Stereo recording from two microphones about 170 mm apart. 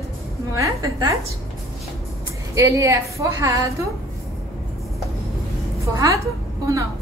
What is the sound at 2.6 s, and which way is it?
A woman's voice, 20° right (ahead or behind).